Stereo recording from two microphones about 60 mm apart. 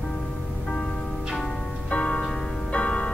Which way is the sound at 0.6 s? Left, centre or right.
Centre.